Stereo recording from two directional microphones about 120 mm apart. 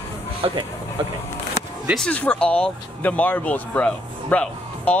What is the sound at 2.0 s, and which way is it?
Speech, 10° left (ahead or behind).